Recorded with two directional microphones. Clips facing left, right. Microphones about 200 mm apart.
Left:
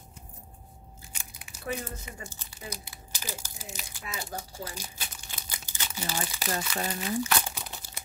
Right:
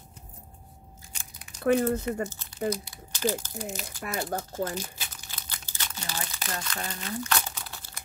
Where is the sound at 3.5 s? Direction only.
50° right (ahead or behind).